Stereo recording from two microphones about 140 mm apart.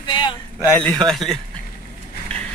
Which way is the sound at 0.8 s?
5° left (ahead or behind).